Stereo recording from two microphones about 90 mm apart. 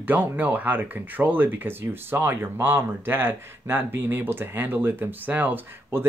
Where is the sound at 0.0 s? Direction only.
20° right (ahead or behind).